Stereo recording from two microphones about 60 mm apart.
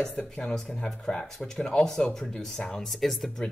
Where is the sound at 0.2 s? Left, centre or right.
Centre.